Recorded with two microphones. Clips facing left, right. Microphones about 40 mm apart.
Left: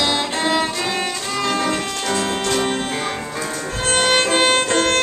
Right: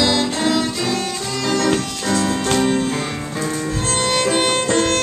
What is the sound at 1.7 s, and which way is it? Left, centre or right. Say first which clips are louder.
Music: right 1 dB; left.